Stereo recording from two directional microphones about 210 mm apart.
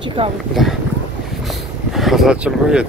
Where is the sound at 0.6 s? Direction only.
Centre (ahead or behind).